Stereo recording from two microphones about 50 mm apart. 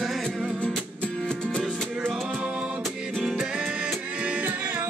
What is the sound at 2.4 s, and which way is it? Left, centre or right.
Music, right.